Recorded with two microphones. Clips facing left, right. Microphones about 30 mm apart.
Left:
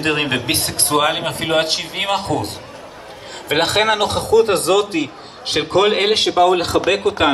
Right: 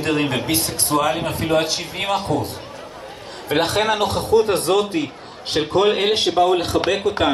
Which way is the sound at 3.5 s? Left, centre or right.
Left.